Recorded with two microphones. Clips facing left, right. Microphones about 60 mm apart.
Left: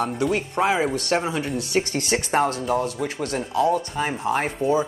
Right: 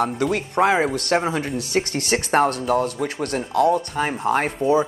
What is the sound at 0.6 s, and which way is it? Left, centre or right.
Speech, right.